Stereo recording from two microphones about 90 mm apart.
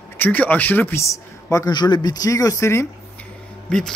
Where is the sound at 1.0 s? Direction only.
35° left (ahead or behind).